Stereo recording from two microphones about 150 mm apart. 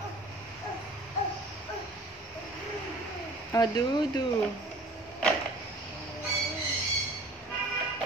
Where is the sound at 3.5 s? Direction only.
25° left (ahead or behind).